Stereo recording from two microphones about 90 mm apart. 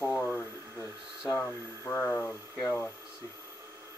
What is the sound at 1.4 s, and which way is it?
Speech, 20° left (ahead or behind).